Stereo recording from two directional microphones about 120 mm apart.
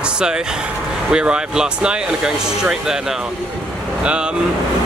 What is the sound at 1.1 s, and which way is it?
Speech, 5° right (ahead or behind).